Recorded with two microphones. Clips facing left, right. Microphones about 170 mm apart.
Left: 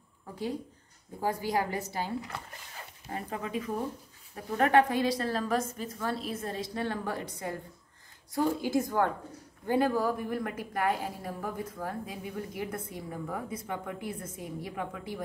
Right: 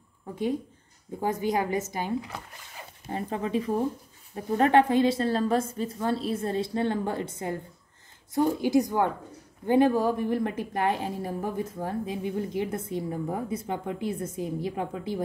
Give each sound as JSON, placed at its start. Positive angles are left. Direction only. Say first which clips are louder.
{"t": 1.2, "sound": "a woman's voice", "louder": "right 3 dB", "side_deg": -20}